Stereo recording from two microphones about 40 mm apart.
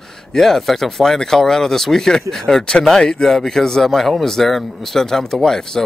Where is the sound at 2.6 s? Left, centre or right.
Left.